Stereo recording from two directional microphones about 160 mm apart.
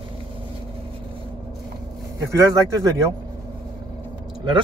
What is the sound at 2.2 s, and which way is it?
Speech, 20° right (ahead or behind).